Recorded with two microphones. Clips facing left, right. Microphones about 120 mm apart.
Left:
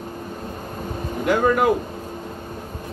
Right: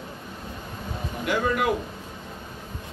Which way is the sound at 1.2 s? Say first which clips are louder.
Left 6 dB; 45° left (ahead or behind).